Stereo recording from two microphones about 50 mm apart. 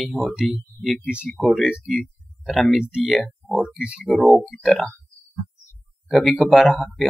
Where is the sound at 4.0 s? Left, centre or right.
Centre.